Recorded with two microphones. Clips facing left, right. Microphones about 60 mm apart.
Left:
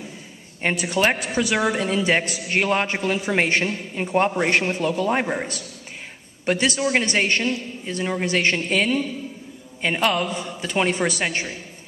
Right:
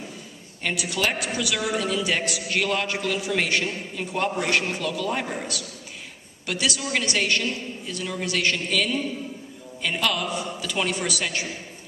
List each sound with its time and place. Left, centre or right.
0.6 s a man's voice: left